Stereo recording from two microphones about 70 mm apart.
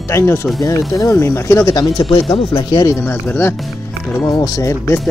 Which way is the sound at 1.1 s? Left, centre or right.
Left.